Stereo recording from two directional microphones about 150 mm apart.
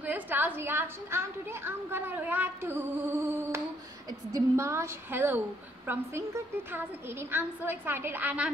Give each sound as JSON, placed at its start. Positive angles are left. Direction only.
{"t": 0.0, "sound": "a woman's voice", "side_deg": -10}